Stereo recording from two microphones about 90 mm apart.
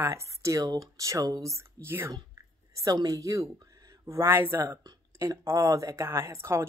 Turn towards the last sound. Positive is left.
turn(degrees=-30)  # may be behind; listen again after turning